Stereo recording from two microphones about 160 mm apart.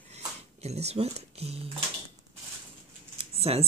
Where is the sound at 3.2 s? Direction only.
40° right (ahead or behind).